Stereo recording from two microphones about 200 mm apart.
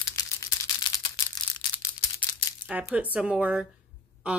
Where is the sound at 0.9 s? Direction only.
20° left (ahead or behind).